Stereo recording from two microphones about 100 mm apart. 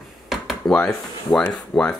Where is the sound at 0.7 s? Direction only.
10° left (ahead or behind).